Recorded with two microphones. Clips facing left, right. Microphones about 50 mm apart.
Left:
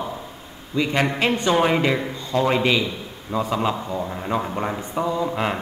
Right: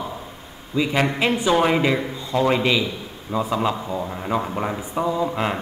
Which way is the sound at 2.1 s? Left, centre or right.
Centre.